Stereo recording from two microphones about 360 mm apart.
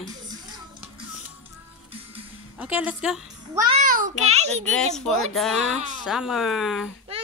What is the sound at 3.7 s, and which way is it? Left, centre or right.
Speech, right.